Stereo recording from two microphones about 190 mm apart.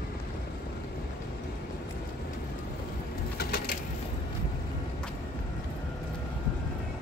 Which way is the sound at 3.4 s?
55° left (ahead or behind).